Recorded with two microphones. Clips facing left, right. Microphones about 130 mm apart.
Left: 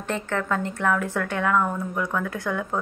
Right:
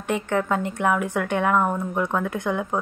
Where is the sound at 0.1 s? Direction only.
15° right (ahead or behind).